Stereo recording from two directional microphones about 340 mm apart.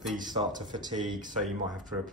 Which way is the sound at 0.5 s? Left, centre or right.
Right.